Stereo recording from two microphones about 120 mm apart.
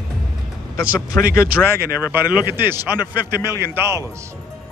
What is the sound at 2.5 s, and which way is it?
Speech, 20° right (ahead or behind).